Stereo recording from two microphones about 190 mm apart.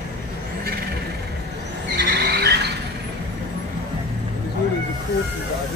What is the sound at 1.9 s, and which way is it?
Vehicle, 60° right (ahead or behind).